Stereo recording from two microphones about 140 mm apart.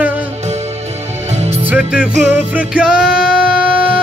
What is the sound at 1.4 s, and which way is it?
Music, 45° right (ahead or behind).